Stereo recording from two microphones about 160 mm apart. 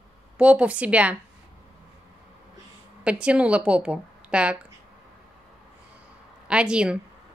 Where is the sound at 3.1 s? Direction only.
5° right (ahead or behind).